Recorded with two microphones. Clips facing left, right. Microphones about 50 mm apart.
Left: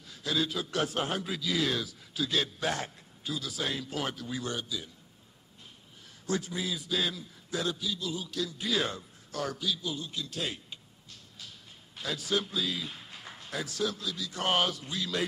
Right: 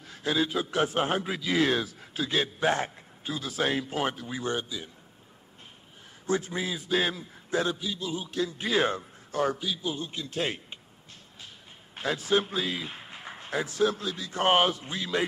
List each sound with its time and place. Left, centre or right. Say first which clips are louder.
0.1 s a man's voice: right 4 dB; right
6.2 s a man's voice: right 4 dB; right
11.9 s a man's voice: right 5 dB; right